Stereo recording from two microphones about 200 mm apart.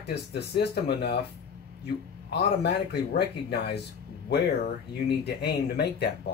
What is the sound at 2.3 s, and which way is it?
Speech, 55° left (ahead or behind).